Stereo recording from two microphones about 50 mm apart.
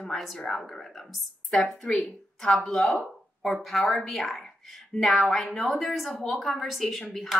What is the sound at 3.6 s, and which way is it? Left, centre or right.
Speech, centre.